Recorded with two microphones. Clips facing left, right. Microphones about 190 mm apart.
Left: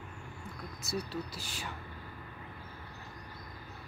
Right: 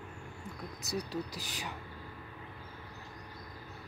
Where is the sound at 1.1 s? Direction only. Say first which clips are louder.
Right 1 dB; 15° right (ahead or behind).